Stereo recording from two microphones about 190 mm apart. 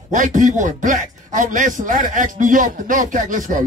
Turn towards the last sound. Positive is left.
turn(degrees=-40)  # may be behind; listen again after turning